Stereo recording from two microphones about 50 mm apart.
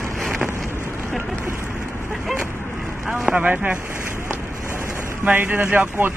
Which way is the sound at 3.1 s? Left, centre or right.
Right.